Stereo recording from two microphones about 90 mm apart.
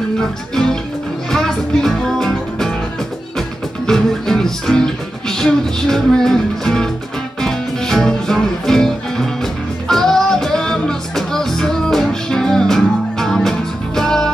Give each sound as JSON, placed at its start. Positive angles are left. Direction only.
{"t": 0.2, "sound": "music", "side_deg": 5}